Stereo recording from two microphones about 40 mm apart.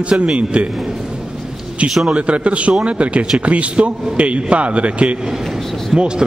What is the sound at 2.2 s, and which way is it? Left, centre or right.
A man's voice, right.